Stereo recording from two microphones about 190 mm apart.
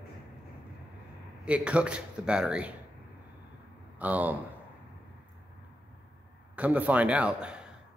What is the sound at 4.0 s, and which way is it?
Speech, 10° right (ahead or behind).